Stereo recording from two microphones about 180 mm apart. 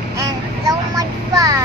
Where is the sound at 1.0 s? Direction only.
20° right (ahead or behind).